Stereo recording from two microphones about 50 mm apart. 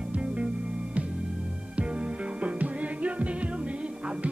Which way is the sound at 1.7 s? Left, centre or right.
Right.